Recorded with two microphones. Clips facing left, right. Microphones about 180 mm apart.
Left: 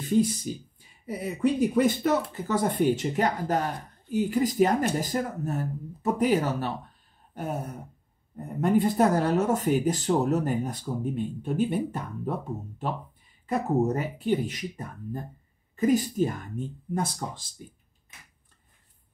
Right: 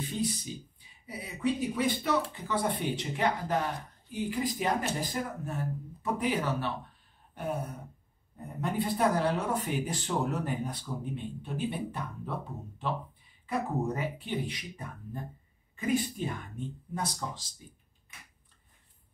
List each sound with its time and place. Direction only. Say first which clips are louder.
0.0 s speech: left 9 dB; 45° left (ahead or behind)
7.3 s a sound: left 2 dB; 40° left (ahead or behind)
8.5 s speech: left 8 dB; 45° left (ahead or behind)